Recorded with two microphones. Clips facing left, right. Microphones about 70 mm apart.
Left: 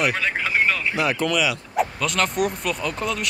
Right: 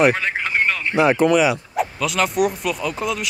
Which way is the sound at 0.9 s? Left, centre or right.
Right.